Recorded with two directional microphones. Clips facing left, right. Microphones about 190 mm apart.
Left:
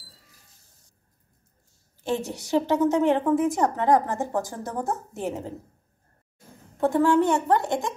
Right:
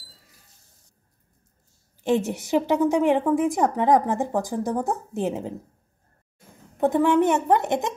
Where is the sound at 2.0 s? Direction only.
15° right (ahead or behind).